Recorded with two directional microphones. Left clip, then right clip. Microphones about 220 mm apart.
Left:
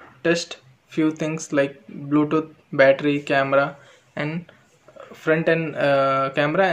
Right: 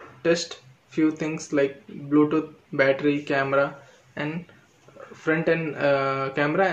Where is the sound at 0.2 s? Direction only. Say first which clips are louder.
Left 1 dB; 40° left (ahead or behind).